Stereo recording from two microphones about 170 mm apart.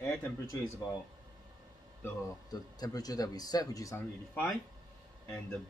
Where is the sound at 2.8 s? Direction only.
20° left (ahead or behind).